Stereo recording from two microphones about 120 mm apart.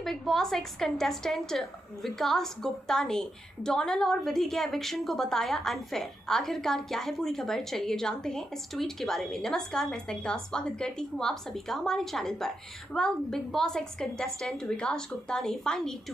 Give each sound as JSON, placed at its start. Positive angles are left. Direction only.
{"t": 0.0, "sound": "a woman's voice", "side_deg": 5}